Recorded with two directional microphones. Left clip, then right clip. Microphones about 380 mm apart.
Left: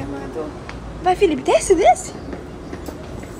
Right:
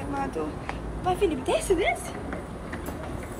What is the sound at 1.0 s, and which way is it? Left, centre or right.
Speech, left.